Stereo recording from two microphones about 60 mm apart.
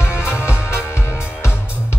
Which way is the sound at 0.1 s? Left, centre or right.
Centre.